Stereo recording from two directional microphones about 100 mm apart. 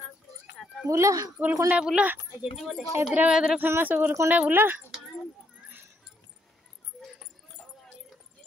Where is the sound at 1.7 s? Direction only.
10° right (ahead or behind).